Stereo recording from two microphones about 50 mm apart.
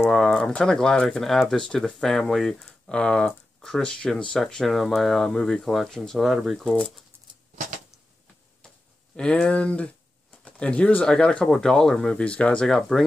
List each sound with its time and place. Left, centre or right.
0.1 s speech: centre
2.9 s speech: left
4.0 s speech: centre
6.1 s speech: centre
9.1 s speech: centre
10.4 s pigeon: left
11.1 s speech: centre
12.2 s speech: left
12.6 s speech: centre